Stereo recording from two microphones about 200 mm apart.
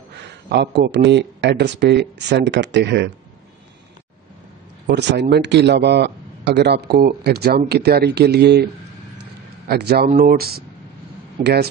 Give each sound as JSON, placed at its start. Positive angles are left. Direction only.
{"t": 0.2, "sound": "a man's voice", "side_deg": -60}
{"t": 4.8, "sound": "a man's voice", "side_deg": -55}
{"t": 9.7, "sound": "speech", "side_deg": -50}